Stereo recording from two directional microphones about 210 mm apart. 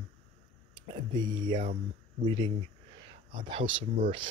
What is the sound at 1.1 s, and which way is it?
Speech, 20° right (ahead or behind).